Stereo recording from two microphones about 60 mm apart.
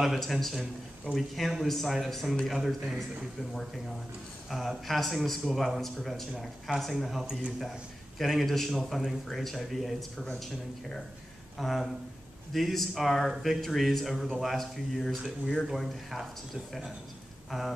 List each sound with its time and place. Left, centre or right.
0.0 s a man's voice: centre
11.5 s a man's voice: centre
17.5 s speech: centre